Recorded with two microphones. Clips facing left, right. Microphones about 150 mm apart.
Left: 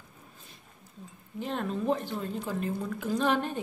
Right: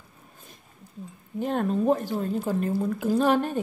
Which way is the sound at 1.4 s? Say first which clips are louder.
Right 7 dB; 50° right (ahead or behind).